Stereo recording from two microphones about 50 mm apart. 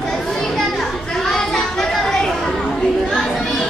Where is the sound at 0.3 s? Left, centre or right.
Centre.